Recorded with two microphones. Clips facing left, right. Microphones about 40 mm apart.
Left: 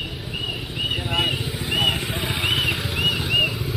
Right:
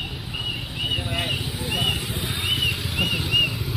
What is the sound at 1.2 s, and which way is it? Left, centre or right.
Vehicle, centre.